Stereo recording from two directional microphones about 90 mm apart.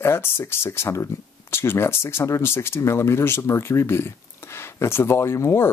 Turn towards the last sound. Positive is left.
turn(degrees=30)  # may be behind; listen again after turning